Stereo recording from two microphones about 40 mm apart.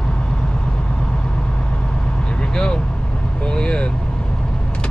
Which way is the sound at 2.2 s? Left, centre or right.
Left.